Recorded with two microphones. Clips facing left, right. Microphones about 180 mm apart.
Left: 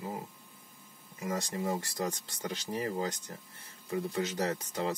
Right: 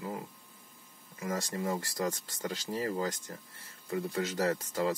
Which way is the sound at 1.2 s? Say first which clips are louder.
Even; 20° left (ahead or behind).